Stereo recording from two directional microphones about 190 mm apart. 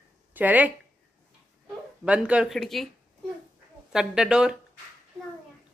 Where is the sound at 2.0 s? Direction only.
5° right (ahead or behind).